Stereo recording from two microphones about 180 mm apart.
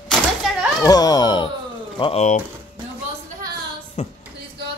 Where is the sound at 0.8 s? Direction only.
20° left (ahead or behind).